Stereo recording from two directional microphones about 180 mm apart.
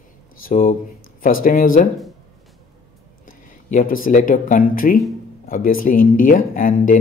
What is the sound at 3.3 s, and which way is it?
Speech, 50° left (ahead or behind).